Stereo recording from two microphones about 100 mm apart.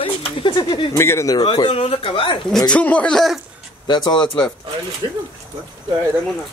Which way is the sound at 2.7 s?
10° left (ahead or behind).